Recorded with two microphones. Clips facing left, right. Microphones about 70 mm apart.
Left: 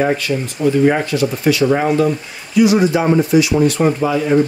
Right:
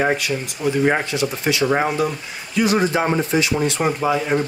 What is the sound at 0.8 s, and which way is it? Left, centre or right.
Speech, right.